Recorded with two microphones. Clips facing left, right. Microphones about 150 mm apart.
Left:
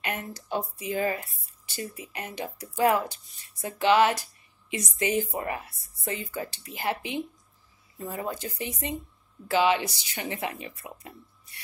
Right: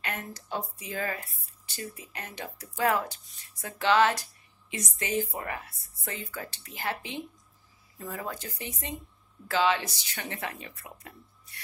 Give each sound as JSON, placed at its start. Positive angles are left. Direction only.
{"t": 0.0, "sound": "speech", "side_deg": 15}